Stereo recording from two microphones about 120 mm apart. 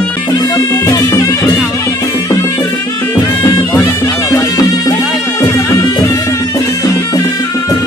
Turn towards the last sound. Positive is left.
turn(degrees=30)  # may be behind; listen again after turning